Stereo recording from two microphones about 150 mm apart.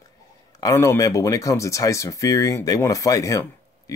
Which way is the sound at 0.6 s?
20° left (ahead or behind).